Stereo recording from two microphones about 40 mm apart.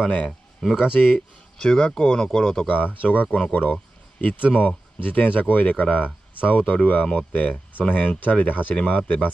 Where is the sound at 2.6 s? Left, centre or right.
Left.